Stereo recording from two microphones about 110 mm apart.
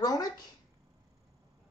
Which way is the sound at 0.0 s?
35° left (ahead or behind).